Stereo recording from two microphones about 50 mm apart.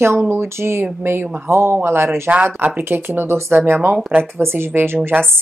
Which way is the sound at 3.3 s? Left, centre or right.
Right.